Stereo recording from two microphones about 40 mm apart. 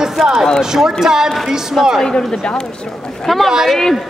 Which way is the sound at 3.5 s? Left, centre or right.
Centre.